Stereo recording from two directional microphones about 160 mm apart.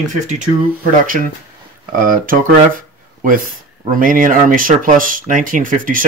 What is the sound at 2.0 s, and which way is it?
Speech, 60° right (ahead or behind).